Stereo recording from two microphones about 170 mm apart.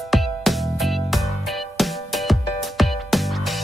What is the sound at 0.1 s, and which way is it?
Music, centre (ahead or behind).